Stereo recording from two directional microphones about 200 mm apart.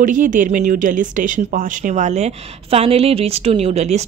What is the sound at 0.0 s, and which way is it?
Speech, 40° right (ahead or behind).